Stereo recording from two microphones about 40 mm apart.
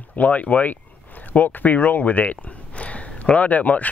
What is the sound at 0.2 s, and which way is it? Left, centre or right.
Speech, left.